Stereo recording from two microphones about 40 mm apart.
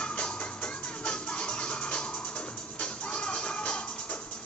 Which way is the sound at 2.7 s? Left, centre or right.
Left.